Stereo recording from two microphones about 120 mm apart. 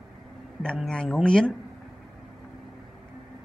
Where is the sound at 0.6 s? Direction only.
5° left (ahead or behind).